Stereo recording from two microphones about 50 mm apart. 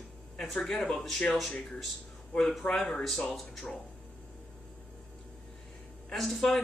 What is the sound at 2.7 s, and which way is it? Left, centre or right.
Speech, centre.